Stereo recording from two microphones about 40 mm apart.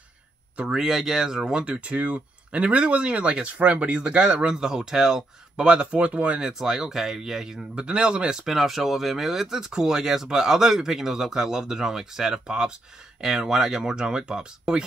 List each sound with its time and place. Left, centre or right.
0.7 s speech: centre
1.6 s speech: right
4.6 s speech: centre; by 6.4 s right
6.4 s speech: centre
7.7 s speech: right
8.5 s speech: centre; by 14.8 s right